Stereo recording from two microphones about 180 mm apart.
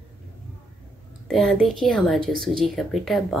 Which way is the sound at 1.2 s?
Centre (ahead or behind).